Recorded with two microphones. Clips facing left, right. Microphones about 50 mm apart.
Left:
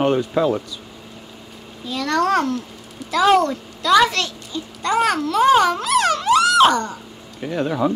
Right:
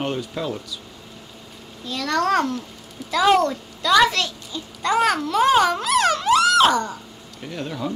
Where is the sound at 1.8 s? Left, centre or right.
Centre.